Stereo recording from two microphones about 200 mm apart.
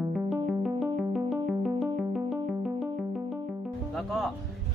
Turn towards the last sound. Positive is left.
turn(degrees=0)  # may be behind; listen again after turning